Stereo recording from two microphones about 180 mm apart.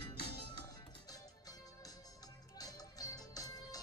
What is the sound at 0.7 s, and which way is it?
Music, 20° left (ahead or behind).